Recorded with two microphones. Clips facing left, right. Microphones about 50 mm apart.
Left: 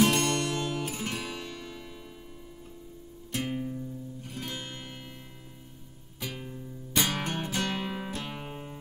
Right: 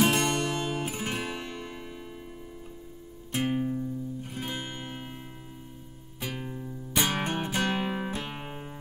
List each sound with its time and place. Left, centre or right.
0.0 s music: centre
3.3 s music: right
6.2 s music: centre